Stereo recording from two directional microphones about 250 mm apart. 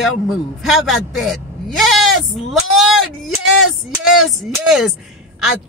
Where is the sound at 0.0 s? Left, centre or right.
Centre.